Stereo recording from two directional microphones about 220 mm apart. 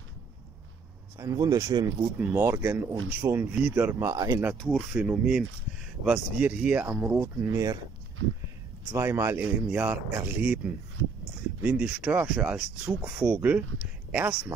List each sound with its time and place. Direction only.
1.1 s speech: 15° right (ahead or behind)
4.6 s speech: centre (ahead or behind)
8.9 s speech: 10° right (ahead or behind)
11.6 s speech: 5° right (ahead or behind)